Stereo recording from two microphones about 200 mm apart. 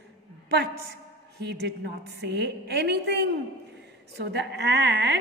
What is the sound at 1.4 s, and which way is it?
A woman's voice, 55° right (ahead or behind).